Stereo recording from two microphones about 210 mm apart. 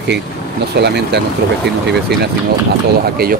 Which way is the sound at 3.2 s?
45° right (ahead or behind).